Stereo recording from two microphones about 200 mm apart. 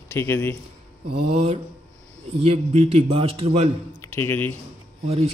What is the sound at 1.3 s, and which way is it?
A man's voice, 30° right (ahead or behind).